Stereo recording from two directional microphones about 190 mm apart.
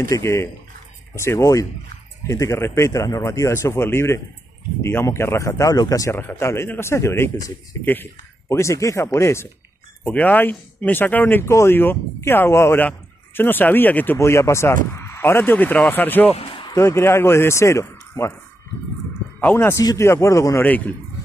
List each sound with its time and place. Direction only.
0.1 s speech: 15° left (ahead or behind)
16.3 s a sound: 25° left (ahead or behind)
16.7 s speech: 15° left (ahead or behind)
19.4 s speech: 10° left (ahead or behind)